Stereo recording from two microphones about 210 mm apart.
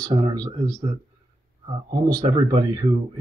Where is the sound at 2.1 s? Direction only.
20° right (ahead or behind).